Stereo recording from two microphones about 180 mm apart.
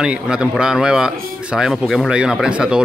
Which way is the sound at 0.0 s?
5° right (ahead or behind).